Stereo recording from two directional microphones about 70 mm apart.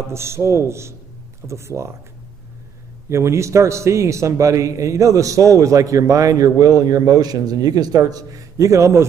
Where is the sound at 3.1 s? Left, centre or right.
Right.